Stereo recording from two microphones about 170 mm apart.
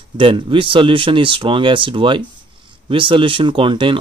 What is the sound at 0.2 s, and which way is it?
Speech, 30° right (ahead or behind).